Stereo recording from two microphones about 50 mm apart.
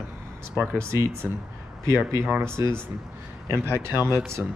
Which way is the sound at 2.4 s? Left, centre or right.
Right.